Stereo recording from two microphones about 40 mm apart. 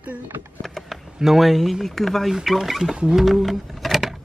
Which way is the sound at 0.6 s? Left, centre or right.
Centre.